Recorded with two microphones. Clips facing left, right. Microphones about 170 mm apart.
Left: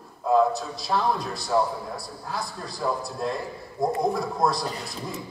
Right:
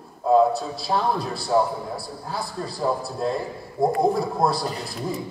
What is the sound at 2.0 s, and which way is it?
A man's voice, 30° right (ahead or behind).